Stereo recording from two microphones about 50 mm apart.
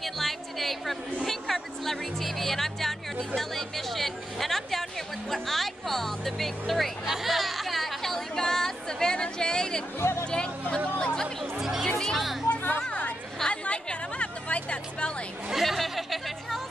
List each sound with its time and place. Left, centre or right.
0.0 s a sound: centre
1.2 s music: centre
3.3 s chatter: centre
5.3 s music: centre
7.1 s chatter: centre
9.9 s music: left
10.2 s chatter: centre
11.5 s music: centre
11.8 s music: centre
12.4 s music: left
12.8 s chatter: left
13.5 s a sound: left
15.5 s music: centre